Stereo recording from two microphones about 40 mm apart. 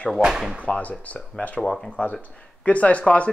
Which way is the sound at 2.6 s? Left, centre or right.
Left.